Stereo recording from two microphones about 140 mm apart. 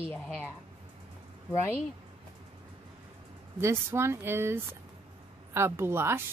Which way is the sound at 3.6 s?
20° right (ahead or behind).